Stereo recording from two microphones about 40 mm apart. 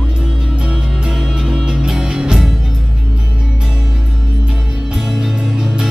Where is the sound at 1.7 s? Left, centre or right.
Centre.